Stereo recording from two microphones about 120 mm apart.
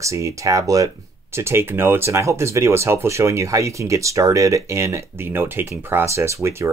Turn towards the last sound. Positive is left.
turn(degrees=-20)  # may be behind; listen again after turning